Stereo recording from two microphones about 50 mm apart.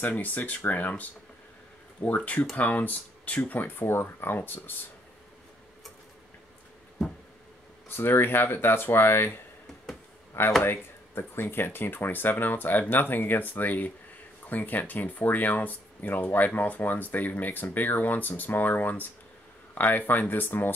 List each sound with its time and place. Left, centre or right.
0.0 s speech: left
2.0 s speech: left
7.9 s speech: left
10.6 s speech: left